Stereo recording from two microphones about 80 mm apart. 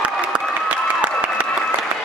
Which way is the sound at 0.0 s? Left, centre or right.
Centre.